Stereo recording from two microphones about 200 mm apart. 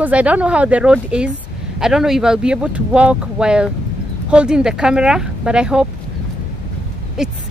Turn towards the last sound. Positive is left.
turn(degrees=-5)  # may be behind; listen again after turning